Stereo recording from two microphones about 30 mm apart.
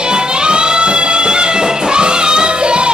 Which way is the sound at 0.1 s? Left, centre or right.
Right.